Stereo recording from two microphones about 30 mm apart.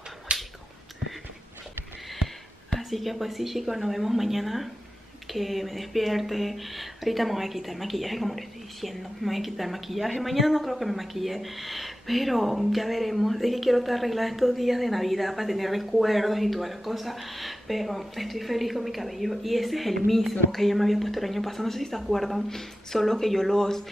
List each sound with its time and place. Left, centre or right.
0.3 s finger snapping: right
2.8 s speech: centre